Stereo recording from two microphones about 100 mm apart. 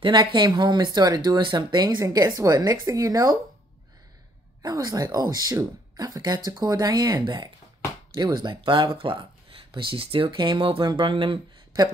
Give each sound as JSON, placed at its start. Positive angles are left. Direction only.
{"t": 0.0, "sound": "speech", "side_deg": -55}
{"t": 2.0, "sound": "speech", "side_deg": -35}
{"t": 4.6, "sound": "speech", "side_deg": -40}